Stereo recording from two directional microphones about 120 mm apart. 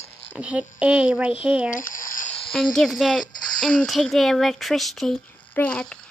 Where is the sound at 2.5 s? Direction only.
5° left (ahead or behind).